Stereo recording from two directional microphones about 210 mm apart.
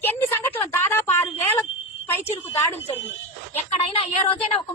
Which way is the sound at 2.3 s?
30° left (ahead or behind).